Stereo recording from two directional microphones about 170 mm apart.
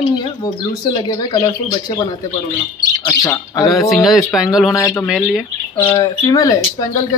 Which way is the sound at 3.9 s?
Centre (ahead or behind).